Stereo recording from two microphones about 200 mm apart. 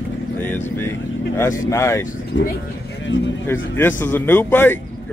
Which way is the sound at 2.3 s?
70° left (ahead or behind).